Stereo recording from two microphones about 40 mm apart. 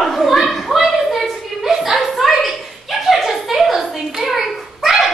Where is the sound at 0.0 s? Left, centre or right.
Centre.